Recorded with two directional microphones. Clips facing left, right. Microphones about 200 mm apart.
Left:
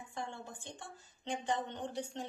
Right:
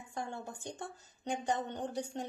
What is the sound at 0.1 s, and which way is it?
A woman's voice, 45° right (ahead or behind).